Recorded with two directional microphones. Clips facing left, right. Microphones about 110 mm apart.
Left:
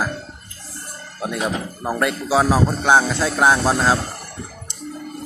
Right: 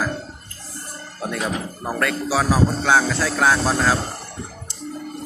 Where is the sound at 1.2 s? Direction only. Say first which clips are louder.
Left 2 dB; 15° left (ahead or behind).